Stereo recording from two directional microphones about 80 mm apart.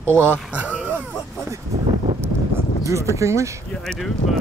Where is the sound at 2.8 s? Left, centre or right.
Right.